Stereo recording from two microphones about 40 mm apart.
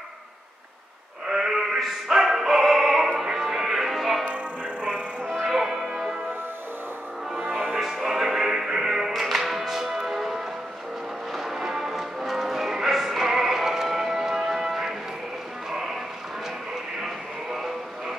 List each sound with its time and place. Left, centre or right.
1.3 s a sound: centre
1.8 s opera: centre
3.2 s music: centre
4.2 s music: right
5.2 s music: centre
5.5 s music: centre
7.8 s music: centre
17.0 s a sound: centre